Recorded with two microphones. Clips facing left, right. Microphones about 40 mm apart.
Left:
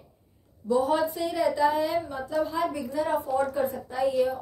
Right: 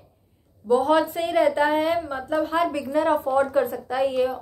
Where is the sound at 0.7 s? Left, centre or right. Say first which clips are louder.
Right 5 dB; right.